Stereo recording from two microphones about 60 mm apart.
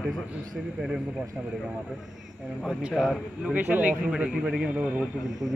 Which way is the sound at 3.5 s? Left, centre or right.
Right.